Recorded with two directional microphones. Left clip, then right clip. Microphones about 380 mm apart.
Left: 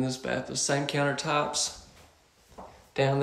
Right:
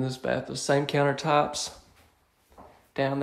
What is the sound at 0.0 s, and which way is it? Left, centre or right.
Speech, centre.